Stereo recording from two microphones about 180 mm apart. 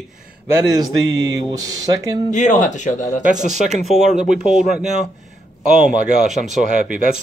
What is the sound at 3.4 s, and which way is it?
Speech, 40° right (ahead or behind).